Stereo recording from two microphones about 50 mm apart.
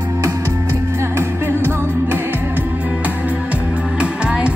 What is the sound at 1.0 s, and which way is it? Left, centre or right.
Music, right.